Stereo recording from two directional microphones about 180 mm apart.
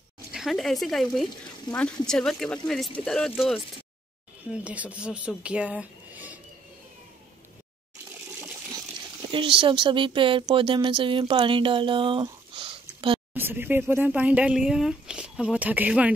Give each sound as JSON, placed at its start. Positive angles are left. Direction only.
{"t": 0.3, "sound": "speech", "side_deg": 0}
{"t": 5.4, "sound": "a sound", "side_deg": -5}
{"t": 9.3, "sound": "speech", "side_deg": -30}
{"t": 13.3, "sound": "speech", "side_deg": -10}